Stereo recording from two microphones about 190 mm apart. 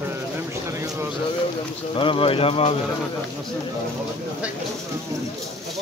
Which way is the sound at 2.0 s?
30° left (ahead or behind).